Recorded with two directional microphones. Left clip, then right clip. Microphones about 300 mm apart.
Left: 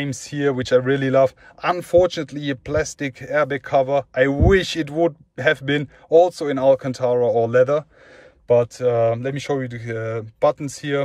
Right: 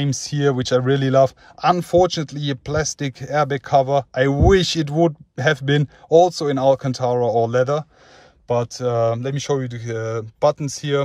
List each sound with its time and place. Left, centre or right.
0.0 s speech: centre